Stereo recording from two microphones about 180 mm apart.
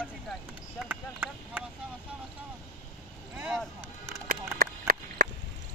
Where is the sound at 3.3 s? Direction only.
10° right (ahead or behind).